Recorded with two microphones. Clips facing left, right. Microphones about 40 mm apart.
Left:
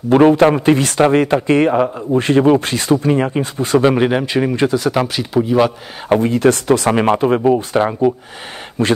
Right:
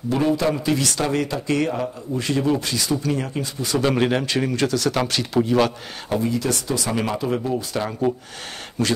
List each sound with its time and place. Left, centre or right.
0.1 s a man's voice: left
3.8 s speech: centre
6.0 s a man's voice: left